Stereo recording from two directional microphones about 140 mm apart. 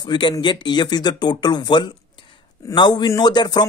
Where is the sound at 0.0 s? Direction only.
35° left (ahead or behind).